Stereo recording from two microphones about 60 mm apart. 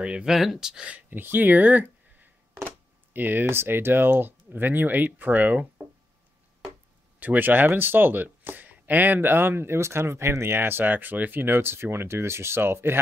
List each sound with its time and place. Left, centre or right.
0.0 s speech: centre
1.1 s speech: right
7.2 s speech: right